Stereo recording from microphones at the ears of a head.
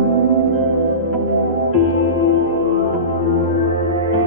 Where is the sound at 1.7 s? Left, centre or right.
Left.